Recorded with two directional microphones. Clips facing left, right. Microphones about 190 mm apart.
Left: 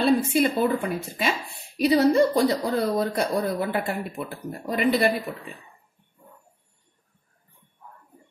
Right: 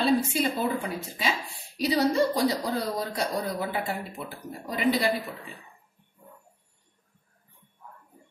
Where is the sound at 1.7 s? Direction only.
55° left (ahead or behind).